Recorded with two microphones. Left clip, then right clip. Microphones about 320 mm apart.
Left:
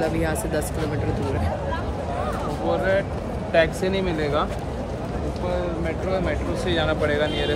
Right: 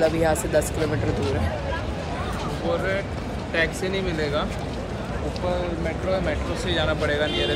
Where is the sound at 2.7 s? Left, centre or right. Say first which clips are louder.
Left 3 dB; left.